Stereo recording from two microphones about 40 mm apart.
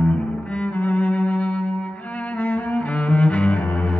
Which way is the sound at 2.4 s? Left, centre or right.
Left.